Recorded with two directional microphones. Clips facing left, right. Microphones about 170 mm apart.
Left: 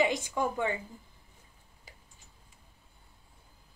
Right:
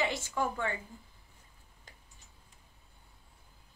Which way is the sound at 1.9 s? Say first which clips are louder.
Left 2 dB; 5° left (ahead or behind).